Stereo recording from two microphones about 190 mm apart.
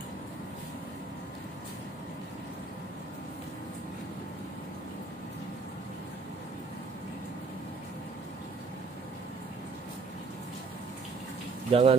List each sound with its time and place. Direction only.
11.7 s speech: 30° right (ahead or behind)